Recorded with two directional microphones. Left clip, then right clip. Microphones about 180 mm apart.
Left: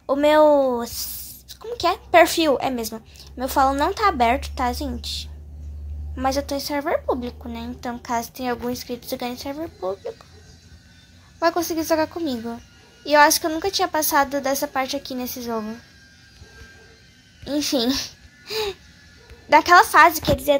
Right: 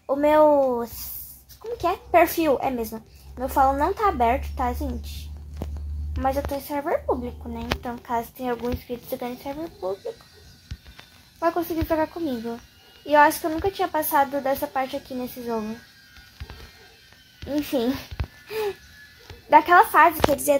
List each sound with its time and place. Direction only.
0.0 s a woman's voice: 20° left (ahead or behind)
6.1 s a woman's voice: 25° left (ahead or behind)
11.3 s a woman's voice: 25° left (ahead or behind)
17.5 s a woman's voice: 20° left (ahead or behind)
19.5 s a woman's voice: 20° left (ahead or behind)